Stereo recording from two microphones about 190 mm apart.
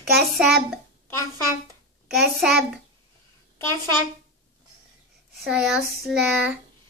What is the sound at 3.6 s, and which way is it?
Speech, 15° left (ahead or behind).